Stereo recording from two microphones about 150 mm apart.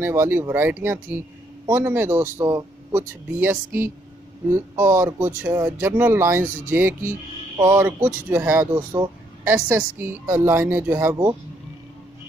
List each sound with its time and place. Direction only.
0.0 s speech: 15° right (ahead or behind)